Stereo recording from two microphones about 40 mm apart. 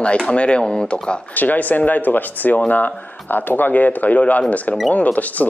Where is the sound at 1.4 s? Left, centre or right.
Left.